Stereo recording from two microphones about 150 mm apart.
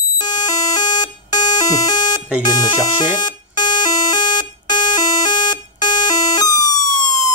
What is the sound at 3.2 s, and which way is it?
Alarm clock, 25° left (ahead or behind).